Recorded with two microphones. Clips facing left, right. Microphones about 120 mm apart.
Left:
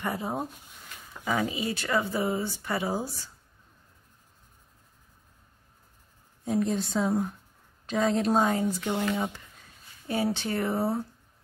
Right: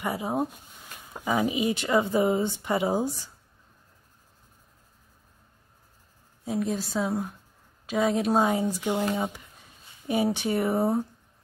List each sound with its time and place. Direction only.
0.0 s speech: 5° right (ahead or behind)
6.4 s a woman's voice: centre (ahead or behind)